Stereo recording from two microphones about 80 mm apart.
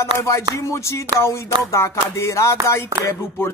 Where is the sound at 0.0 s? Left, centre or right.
Left.